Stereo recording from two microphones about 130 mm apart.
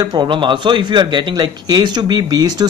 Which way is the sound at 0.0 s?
35° right (ahead or behind).